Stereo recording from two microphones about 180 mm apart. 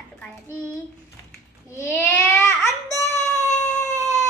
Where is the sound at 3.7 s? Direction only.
40° left (ahead or behind).